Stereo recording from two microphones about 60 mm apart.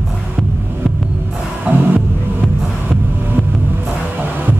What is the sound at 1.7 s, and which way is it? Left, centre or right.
Music, right.